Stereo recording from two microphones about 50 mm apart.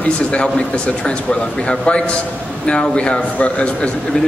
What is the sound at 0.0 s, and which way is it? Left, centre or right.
A man's voice, left.